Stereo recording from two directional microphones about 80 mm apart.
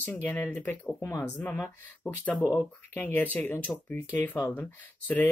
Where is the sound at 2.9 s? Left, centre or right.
Left.